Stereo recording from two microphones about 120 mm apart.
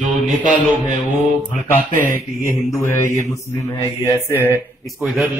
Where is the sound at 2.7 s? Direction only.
25° left (ahead or behind).